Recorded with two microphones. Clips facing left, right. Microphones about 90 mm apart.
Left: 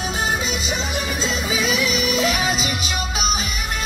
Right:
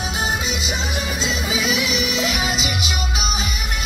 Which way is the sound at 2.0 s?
45° left (ahead or behind).